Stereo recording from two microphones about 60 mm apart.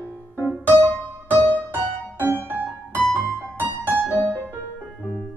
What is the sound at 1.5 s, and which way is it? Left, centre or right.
Music, right.